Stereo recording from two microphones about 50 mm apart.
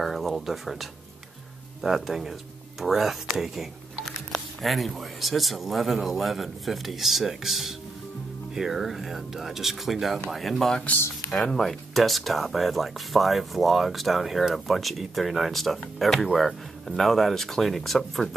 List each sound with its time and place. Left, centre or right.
0.0 s speech: centre
11.2 s speech: centre
11.6 s speech: centre